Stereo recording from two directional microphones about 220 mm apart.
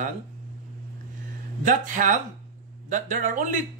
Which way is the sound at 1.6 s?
35° right (ahead or behind).